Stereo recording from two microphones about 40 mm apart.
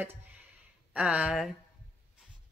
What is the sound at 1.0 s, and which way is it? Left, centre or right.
Speech, right.